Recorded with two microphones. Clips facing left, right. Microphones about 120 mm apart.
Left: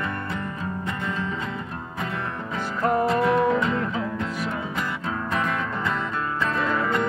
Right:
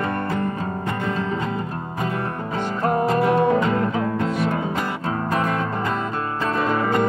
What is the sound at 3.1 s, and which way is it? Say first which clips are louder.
Music: right 3 dB; 50° right (ahead or behind).